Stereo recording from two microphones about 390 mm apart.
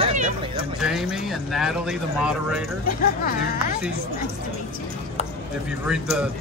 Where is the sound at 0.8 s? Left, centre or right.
Centre.